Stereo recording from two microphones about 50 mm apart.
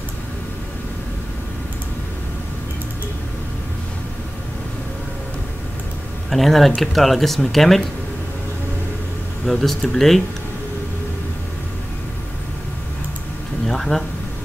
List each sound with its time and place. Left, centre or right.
6.3 s speech: centre
9.5 s speech: centre
13.7 s a sound: centre